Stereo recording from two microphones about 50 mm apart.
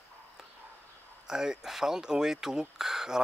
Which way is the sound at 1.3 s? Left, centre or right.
Centre.